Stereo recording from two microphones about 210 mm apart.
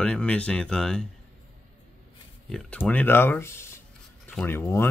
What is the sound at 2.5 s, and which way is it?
Speech, 5° left (ahead or behind).